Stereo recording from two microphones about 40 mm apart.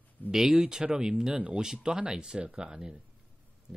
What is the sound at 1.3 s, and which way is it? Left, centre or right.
Speech, right.